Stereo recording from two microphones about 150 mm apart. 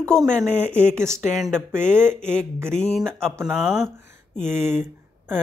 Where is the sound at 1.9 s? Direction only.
15° right (ahead or behind).